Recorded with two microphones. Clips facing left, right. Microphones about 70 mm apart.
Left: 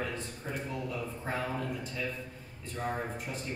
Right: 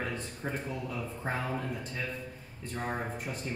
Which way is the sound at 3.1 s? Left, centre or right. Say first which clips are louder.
Right 1 dB; right.